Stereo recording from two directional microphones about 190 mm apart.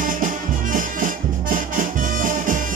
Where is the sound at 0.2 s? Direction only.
45° right (ahead or behind).